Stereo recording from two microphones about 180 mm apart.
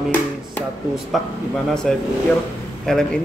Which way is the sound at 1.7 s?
5° left (ahead or behind).